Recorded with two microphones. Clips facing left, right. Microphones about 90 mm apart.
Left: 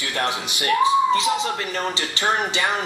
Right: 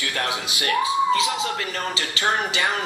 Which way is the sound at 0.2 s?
25° left (ahead or behind).